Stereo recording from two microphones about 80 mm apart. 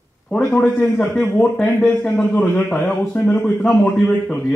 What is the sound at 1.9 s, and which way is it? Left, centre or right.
A man's voice, left.